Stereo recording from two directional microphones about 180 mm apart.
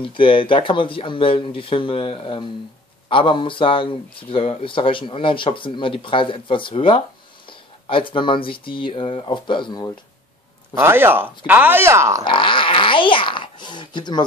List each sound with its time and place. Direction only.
0.0 s speech: 30° left (ahead or behind)
10.7 s speech: 15° right (ahead or behind)
12.3 s a sound: 25° left (ahead or behind)